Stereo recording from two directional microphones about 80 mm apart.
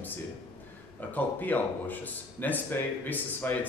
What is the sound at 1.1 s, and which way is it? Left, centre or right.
Speech, left.